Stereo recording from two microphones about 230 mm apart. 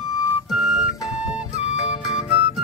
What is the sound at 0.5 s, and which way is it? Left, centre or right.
Flute, centre.